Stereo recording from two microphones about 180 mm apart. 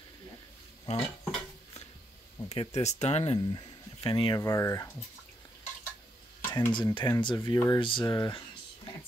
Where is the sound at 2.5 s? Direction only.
35° left (ahead or behind).